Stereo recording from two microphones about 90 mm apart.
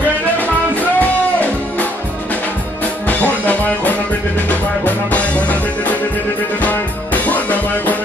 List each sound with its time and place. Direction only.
0.9 s music: 15° left (ahead or behind)
3.1 s music: 20° left (ahead or behind)
7.2 s music: 15° left (ahead or behind)